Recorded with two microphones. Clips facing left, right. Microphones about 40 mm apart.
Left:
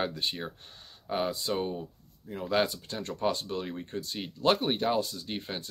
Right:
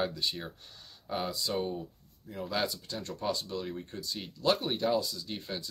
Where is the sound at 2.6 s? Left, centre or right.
Left.